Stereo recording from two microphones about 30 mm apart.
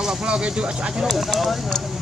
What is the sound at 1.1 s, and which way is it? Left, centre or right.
Speech, centre.